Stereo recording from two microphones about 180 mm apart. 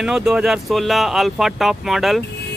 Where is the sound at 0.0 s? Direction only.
5° right (ahead or behind).